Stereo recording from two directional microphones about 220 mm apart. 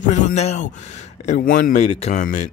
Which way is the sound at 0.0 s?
35° left (ahead or behind).